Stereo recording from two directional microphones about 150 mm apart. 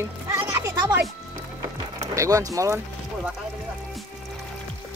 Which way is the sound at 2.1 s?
20° right (ahead or behind).